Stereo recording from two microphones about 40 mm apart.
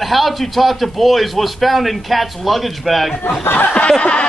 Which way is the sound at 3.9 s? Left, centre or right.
Left.